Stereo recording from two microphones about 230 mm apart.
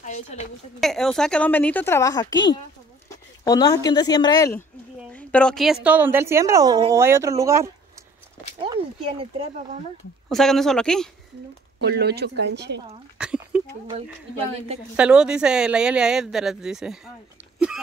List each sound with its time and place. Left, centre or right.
0.0 s a woman's voice: left
0.7 s a woman's voice: centre
3.4 s a woman's voice: centre
5.1 s a woman's voice: centre
8.5 s speech: right
10.3 s speech: centre
11.8 s speech: right
13.2 s speech: centre
15.0 s speech: centre